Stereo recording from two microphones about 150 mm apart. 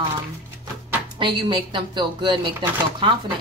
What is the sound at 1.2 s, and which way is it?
A woman's voice, 30° right (ahead or behind).